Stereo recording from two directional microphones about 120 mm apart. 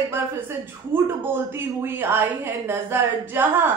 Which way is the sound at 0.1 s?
20° right (ahead or behind).